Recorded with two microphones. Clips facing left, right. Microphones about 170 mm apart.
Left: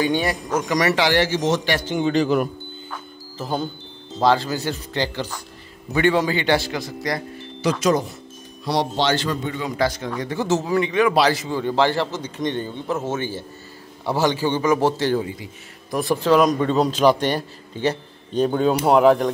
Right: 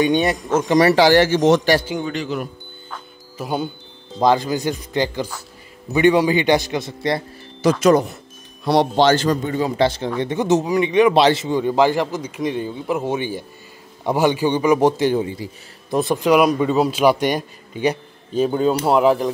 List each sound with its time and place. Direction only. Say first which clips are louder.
0.0 s speech: right 4 dB; 20° right (ahead or behind); by 1.6 s 55° right (ahead or behind)
2.2 s speech: left 5 dB; 55° left (ahead or behind)
3.3 s speech: right 2 dB; 10° right (ahead or behind); by 7.2 s 25° right (ahead or behind)
7.6 s a man's voice: right 5 dB; 55° right (ahead or behind); by 9.7 s 40° right (ahead or behind)
9.7 s a man's voice: right 1 dB; 30° right (ahead or behind)
15.2 s speech: right 4 dB; 30° right (ahead or behind); by 19.3 s centre (ahead or behind)